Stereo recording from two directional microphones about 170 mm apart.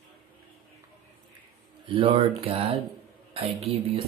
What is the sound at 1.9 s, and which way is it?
Speech, 30° right (ahead or behind).